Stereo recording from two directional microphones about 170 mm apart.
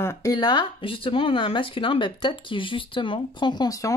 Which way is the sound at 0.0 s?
15° left (ahead or behind).